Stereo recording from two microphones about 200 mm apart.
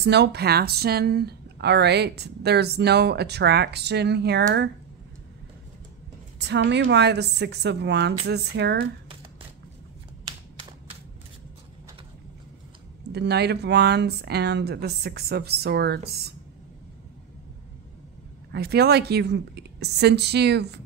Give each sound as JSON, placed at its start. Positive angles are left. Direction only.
{"t": 0.0, "sound": "speech", "side_deg": -55}
{"t": 6.4, "sound": "speech", "side_deg": -60}
{"t": 13.1, "sound": "speech", "side_deg": -55}
{"t": 18.5, "sound": "speech", "side_deg": -55}